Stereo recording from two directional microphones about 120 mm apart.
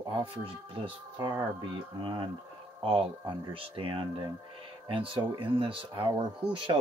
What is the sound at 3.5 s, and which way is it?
Speech, 50° right (ahead or behind).